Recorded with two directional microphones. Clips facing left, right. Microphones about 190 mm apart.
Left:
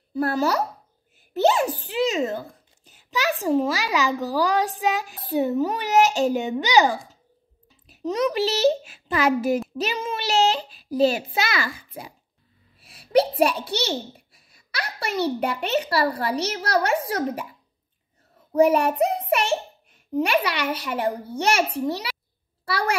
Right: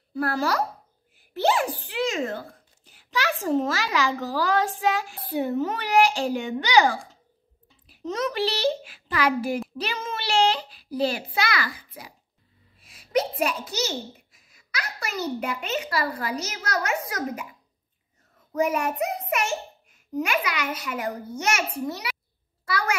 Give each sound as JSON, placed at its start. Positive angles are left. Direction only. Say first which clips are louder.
{"t": 0.1, "sound": "a child's voice", "louder": "left 3 dB", "side_deg": 25}
{"t": 8.1, "sound": "a child's voice", "louder": "left 4 dB", "side_deg": 15}
{"t": 12.9, "sound": "a child's voice", "louder": "left 5 dB", "side_deg": 35}
{"t": 18.5, "sound": "a child's voice", "louder": "left 6 dB", "side_deg": 35}
{"t": 22.7, "sound": "a sound", "louder": "left 2 dB", "side_deg": 30}